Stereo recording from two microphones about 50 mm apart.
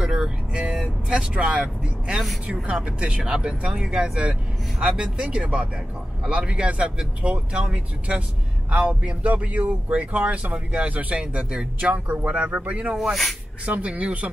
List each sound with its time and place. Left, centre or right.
0.0 s speech: centre
12.9 s speech: centre
13.7 s speech: right